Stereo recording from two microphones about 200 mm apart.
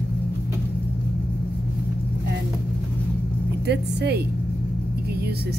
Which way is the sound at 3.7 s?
55° right (ahead or behind).